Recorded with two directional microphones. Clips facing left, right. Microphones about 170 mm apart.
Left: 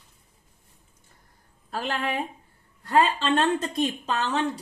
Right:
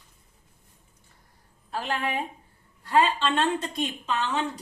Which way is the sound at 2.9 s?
45° left (ahead or behind).